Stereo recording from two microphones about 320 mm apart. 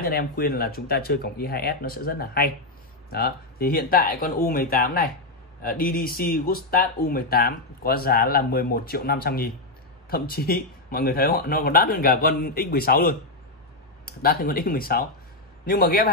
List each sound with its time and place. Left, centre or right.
0.0 s speech: left